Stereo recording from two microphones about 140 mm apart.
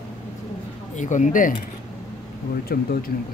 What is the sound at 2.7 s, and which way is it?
Speech, 90° left.